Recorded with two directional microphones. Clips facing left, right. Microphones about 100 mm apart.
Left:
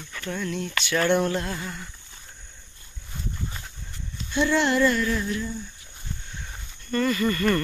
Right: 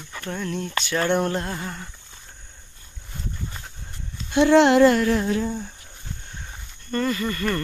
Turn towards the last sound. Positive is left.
turn(degrees=-15)  # may be behind; listen again after turning